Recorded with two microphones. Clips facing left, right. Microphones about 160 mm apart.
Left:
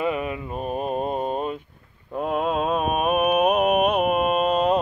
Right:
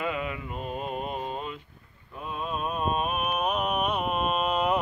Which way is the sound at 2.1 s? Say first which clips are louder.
Left 10 dB; 90° left.